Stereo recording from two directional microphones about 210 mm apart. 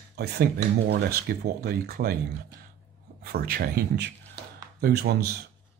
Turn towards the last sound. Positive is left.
turn(degrees=-50)  # may be behind; listen again after turning